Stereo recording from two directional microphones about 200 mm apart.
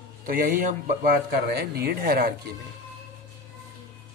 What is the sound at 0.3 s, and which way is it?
Speech, 45° right (ahead or behind).